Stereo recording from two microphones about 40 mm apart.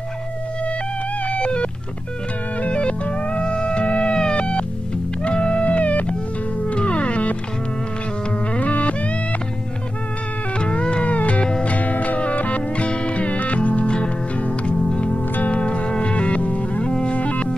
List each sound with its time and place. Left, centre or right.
1.2 s music: left
8.5 s music: left
10.6 s music: left
16.8 s music: left
17.1 s music: left